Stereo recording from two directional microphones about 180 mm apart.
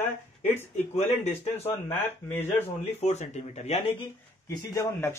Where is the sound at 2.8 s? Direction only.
35° left (ahead or behind).